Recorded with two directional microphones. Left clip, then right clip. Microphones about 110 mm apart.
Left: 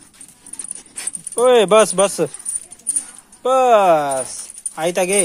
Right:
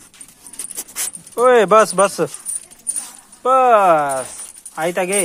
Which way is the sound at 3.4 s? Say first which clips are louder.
Right 1 dB; 20° left (ahead or behind).